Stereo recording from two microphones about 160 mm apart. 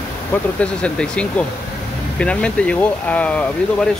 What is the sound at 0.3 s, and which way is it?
Speech, 10° left (ahead or behind).